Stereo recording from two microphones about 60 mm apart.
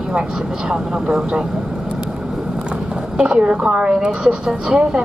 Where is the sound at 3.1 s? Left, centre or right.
Centre.